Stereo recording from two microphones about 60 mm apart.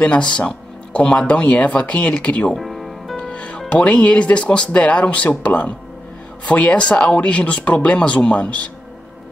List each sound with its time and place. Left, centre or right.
0.0 s speech: centre
2.5 s music: centre
3.2 s speech: centre